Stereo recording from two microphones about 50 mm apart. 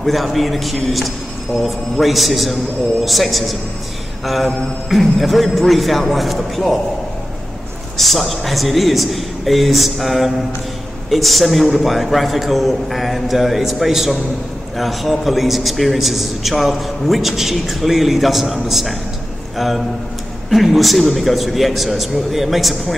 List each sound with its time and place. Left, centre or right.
0.0 s a man's voice: centre
8.0 s a man's voice: centre